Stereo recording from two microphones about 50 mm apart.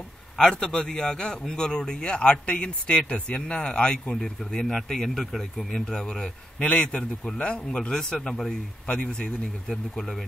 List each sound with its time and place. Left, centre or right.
0.4 s a man's voice: centre
6.7 s a man's voice: left; by 10.2 s centre